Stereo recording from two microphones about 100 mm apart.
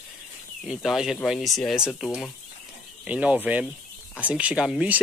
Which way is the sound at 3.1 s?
10° right (ahead or behind).